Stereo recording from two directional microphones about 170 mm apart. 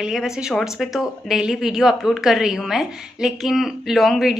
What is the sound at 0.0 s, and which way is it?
A woman's voice, 5° right (ahead or behind).